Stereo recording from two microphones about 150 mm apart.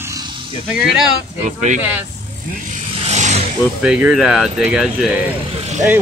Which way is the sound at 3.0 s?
50° right (ahead or behind).